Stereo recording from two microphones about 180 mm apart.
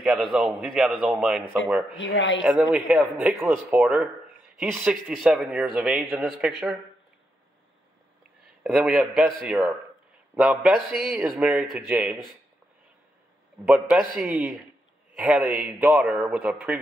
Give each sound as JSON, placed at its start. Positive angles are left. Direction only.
{"t": 0.0, "sound": "a man's voice", "side_deg": 0}
{"t": 2.0, "sound": "speech", "side_deg": 90}
{"t": 2.4, "sound": "a man's voice", "side_deg": -5}
{"t": 8.6, "sound": "a man's voice", "side_deg": 0}
{"t": 13.7, "sound": "a man's voice", "side_deg": -5}